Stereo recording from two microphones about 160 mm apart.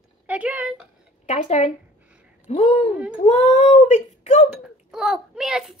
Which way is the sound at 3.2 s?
45° left (ahead or behind).